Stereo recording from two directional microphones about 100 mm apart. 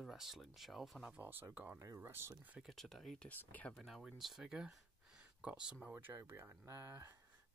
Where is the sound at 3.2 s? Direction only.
15° left (ahead or behind).